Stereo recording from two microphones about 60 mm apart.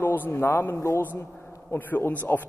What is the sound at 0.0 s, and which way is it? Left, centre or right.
A man's voice, left.